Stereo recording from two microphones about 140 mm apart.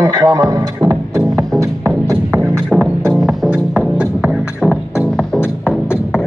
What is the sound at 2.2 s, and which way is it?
Music, 5° right (ahead or behind).